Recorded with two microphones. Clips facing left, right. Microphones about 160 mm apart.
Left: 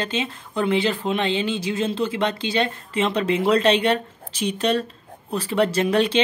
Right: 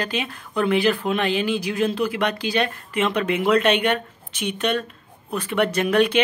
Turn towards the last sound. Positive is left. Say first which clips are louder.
# right 1 dB
turn(degrees=30)  # may be behind; listen again after turning